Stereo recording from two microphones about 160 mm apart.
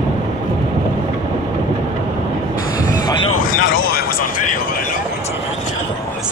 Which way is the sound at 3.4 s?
60° left (ahead or behind).